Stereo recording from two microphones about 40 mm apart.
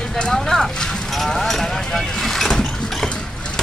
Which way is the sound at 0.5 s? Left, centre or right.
Centre.